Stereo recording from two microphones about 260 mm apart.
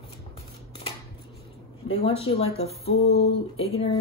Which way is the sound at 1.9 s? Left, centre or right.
Left.